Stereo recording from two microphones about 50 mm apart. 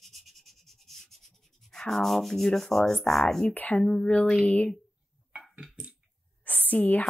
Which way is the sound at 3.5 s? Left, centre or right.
Left.